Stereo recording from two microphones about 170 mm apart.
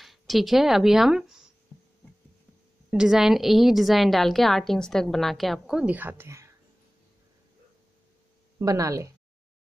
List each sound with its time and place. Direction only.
0.0 s speech: centre (ahead or behind)
2.9 s a woman's voice: 5° right (ahead or behind)
8.5 s speech: 20° right (ahead or behind)